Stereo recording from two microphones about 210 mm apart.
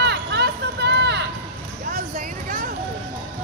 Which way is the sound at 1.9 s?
40° right (ahead or behind).